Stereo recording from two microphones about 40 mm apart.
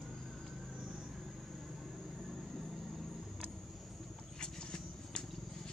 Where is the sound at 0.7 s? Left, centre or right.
Centre.